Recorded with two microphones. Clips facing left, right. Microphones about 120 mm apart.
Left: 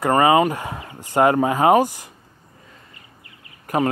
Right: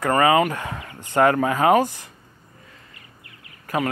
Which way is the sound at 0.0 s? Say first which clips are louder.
Left 2 dB; 25° left (ahead or behind).